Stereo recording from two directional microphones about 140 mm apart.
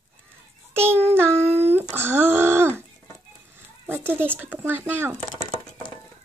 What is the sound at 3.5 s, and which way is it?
Speech, 15° right (ahead or behind).